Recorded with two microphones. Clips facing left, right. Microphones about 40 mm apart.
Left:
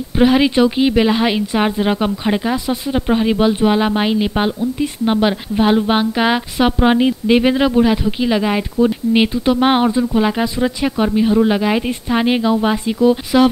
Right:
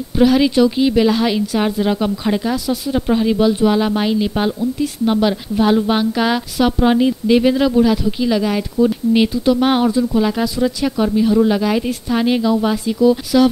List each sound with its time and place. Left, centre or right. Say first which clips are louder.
0.2 s a woman's voice: even; left